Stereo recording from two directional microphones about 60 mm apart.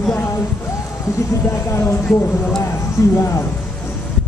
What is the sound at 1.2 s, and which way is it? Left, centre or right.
Speech, left.